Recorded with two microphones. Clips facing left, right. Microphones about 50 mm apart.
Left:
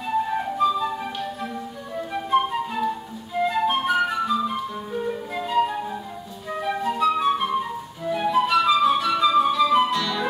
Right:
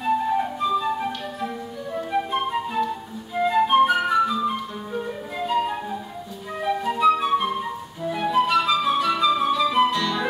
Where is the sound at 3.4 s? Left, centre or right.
Centre.